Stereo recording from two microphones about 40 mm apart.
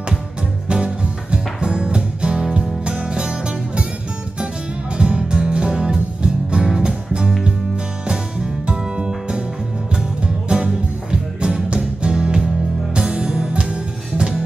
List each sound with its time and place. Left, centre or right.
0.7 s music: right
4.9 s music: right
8.6 s music: right